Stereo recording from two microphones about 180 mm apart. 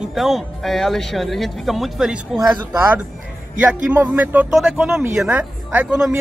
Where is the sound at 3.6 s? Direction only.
10° right (ahead or behind).